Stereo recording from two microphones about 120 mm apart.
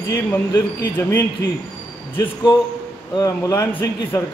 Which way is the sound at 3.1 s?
30° left (ahead or behind).